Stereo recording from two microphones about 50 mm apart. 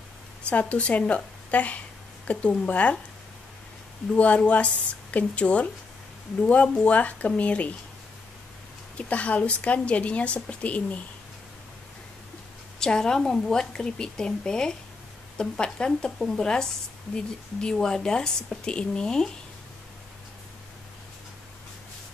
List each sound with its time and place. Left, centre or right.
0.5 s a woman's voice: left
4.1 s a woman's voice: left
8.9 s a woman's voice: left
12.7 s speech: centre